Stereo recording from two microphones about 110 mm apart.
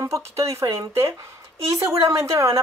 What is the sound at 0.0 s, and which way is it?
Speech, 25° right (ahead or behind).